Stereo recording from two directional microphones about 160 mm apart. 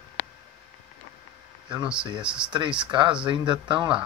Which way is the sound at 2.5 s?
30° right (ahead or behind).